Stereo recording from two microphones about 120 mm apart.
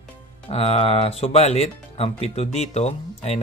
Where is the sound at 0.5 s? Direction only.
60° left (ahead or behind).